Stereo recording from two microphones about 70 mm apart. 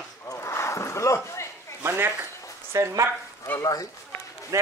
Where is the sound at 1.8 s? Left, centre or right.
Right.